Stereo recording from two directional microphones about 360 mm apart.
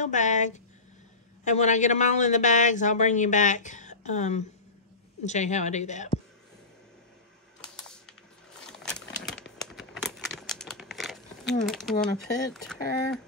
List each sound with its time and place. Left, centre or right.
0.0 s speech: centre
7.6 s typing: centre
8.5 s a sound: centre
11.6 s speech: centre